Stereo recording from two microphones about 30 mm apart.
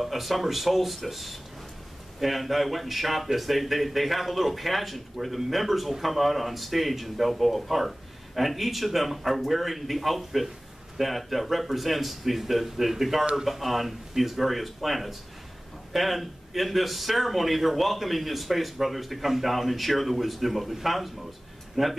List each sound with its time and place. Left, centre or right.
0.0 s a man's voice: centre